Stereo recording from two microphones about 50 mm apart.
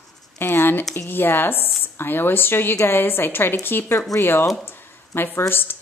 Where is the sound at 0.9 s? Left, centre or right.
Left.